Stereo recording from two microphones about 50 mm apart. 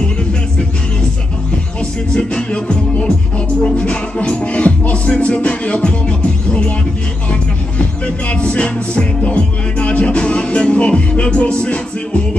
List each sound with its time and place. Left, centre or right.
2.1 s music: centre
8.3 s music: left